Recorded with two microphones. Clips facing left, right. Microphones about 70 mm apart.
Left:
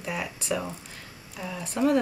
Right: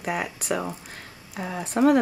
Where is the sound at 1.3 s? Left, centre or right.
Right.